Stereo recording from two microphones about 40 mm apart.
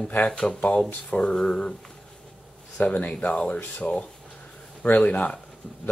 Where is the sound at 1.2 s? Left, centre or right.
Centre.